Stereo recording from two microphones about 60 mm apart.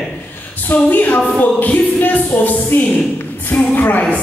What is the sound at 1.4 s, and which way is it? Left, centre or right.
Speech, left.